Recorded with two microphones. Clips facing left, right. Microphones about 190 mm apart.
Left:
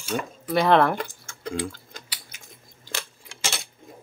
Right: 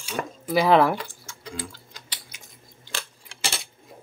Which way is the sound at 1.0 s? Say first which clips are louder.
Left 6 dB; 50° left (ahead or behind).